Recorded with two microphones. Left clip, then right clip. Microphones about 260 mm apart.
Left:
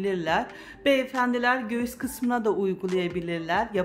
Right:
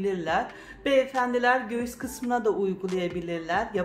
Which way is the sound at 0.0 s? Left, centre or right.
Left.